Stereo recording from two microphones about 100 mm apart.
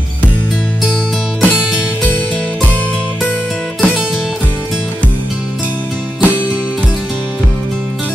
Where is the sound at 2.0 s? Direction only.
15° left (ahead or behind).